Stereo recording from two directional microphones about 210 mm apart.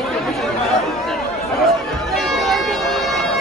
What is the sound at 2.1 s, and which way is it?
Bagpipes, centre (ahead or behind).